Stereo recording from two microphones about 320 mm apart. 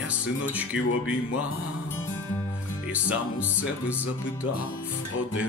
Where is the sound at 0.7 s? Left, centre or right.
Left.